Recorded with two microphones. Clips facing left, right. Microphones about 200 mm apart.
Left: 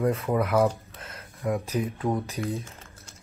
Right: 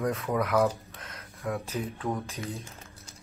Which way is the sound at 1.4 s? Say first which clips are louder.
Left 5 dB; 15° left (ahead or behind).